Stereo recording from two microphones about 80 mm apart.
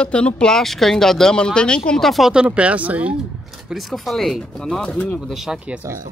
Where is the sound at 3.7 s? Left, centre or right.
Centre.